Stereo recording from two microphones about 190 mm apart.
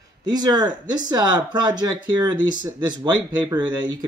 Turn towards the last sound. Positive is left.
turn(degrees=-20)  # may be behind; listen again after turning